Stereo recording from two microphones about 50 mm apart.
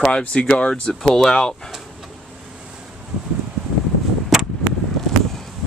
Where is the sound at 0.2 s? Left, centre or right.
Left.